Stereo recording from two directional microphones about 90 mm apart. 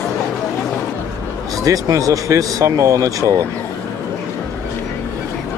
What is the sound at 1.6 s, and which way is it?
Speech, 40° right (ahead or behind).